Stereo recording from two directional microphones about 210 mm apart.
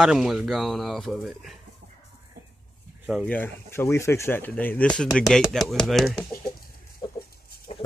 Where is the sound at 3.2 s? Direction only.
10° left (ahead or behind).